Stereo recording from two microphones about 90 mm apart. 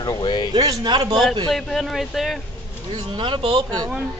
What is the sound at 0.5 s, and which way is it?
Speech, 45° right (ahead or behind).